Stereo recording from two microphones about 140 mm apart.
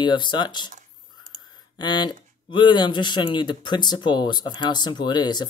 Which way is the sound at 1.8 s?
30° left (ahead or behind).